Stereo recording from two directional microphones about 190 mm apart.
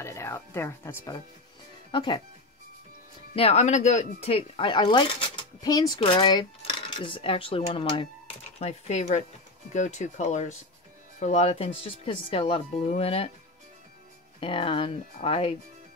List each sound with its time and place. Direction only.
0.0 s speech: 15° left (ahead or behind)
3.3 s speech: 35° left (ahead or behind)
14.4 s speech: 30° left (ahead or behind)